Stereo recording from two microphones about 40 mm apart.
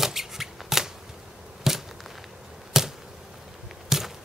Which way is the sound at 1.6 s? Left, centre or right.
Centre.